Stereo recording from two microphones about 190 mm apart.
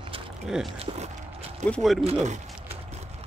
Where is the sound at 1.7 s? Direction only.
Centre (ahead or behind).